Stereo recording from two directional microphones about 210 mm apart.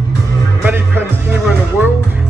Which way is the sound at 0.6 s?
10° right (ahead or behind).